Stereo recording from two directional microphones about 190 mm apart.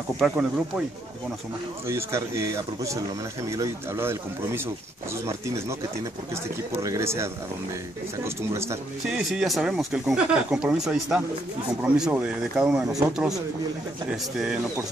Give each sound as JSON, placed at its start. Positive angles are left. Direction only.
{"t": 0.2, "sound": "speech", "side_deg": -5}
{"t": 1.9, "sound": "speech", "side_deg": -15}
{"t": 6.8, "sound": "speech", "side_deg": -15}
{"t": 8.4, "sound": "speech", "side_deg": -15}
{"t": 9.0, "sound": "speech", "side_deg": 0}